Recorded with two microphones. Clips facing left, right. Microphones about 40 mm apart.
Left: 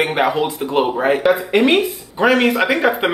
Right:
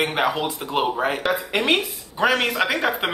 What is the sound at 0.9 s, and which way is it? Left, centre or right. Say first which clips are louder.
Speech: left 7 dB; centre.